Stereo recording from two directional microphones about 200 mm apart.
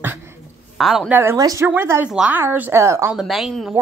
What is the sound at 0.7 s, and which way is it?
A woman's voice, centre (ahead or behind).